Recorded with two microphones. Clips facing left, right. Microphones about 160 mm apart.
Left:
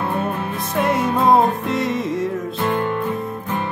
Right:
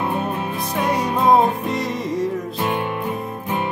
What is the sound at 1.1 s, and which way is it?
Music, 20° right (ahead or behind).